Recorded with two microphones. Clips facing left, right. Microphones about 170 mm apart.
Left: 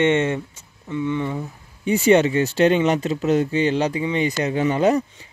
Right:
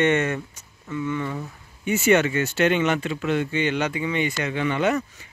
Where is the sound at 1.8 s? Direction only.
35° left (ahead or behind).